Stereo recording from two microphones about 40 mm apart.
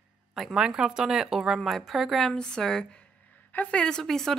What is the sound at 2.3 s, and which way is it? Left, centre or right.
A woman's voice, centre.